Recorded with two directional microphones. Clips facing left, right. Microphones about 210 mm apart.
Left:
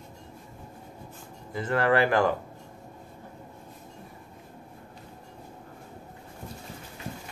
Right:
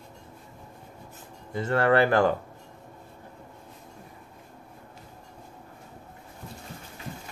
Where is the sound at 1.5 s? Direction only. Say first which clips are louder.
Right 2 dB; 25° right (ahead or behind).